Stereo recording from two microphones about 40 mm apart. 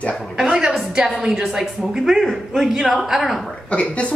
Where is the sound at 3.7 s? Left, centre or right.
Left.